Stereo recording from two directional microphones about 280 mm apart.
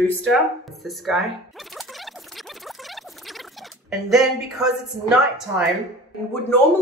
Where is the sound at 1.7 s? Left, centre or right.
Centre.